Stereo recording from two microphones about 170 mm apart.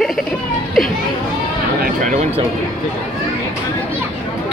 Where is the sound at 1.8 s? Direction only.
50° right (ahead or behind).